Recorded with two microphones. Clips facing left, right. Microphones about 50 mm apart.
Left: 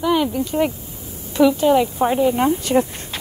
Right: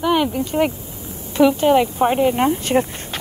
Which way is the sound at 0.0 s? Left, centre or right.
Right.